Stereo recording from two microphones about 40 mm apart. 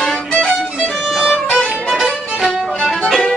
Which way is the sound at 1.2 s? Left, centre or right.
Centre.